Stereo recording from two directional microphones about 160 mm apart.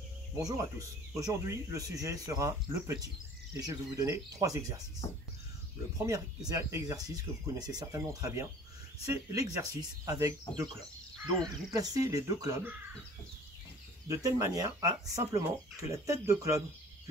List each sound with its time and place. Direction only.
0.4 s speech: 20° right (ahead or behind)
5.9 s speech: 20° right (ahead or behind)
14.0 s speech: 20° right (ahead or behind)